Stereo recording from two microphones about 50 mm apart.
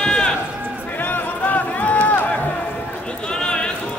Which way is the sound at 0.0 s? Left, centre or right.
Centre.